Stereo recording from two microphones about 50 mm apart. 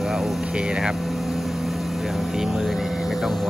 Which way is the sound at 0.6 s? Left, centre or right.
Centre.